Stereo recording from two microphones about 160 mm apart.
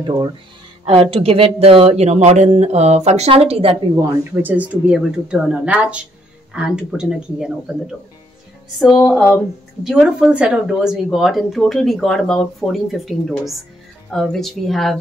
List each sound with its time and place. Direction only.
0.0 s speech: 30° right (ahead or behind)
3.9 s speech: 15° right (ahead or behind); by 15.0 s centre (ahead or behind)